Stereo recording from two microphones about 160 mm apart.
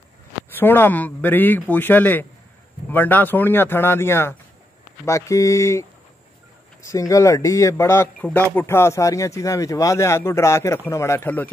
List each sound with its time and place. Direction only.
0.6 s speech: 15° left (ahead or behind)